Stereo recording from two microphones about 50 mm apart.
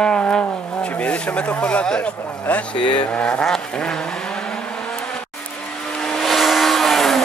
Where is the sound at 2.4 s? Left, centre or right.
Left.